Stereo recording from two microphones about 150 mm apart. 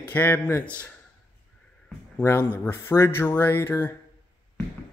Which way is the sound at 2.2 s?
15° left (ahead or behind).